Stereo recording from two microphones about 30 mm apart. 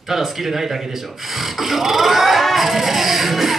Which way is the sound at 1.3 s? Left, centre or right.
Centre.